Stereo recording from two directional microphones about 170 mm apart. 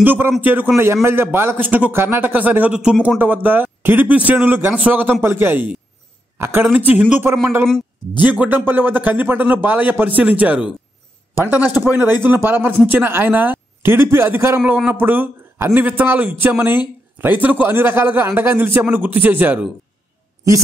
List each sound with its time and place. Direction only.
0.0 s a man's voice: 10° right (ahead or behind)